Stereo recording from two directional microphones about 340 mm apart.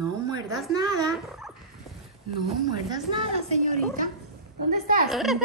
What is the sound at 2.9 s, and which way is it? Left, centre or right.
A woman's voice, centre.